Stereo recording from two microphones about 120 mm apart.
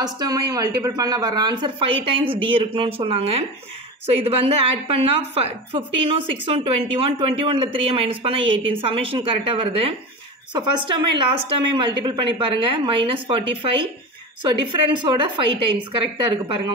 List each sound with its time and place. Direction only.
0.0 s a woman's voice: 30° right (ahead or behind)
14.9 s a woman's voice: 40° right (ahead or behind)